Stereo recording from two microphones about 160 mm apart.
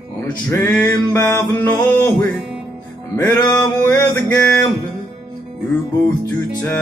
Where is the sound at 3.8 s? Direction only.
15° left (ahead or behind).